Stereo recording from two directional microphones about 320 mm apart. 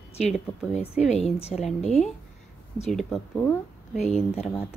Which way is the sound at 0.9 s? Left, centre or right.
Left.